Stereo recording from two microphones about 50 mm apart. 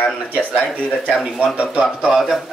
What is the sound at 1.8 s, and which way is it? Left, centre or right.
Speech, centre.